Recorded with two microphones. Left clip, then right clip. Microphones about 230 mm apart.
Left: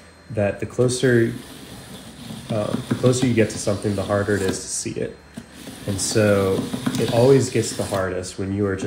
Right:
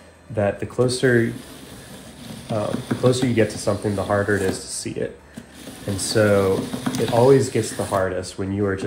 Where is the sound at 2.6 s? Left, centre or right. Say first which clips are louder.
Even; centre.